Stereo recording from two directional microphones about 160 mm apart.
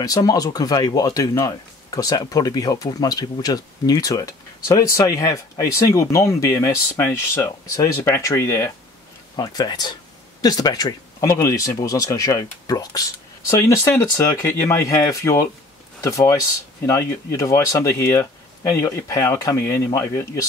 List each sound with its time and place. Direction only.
0.0 s speech: 20° left (ahead or behind)